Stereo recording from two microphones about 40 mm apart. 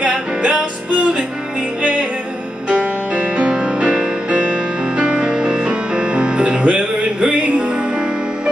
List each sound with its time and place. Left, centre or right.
1.8 s music: right
3.3 s music: right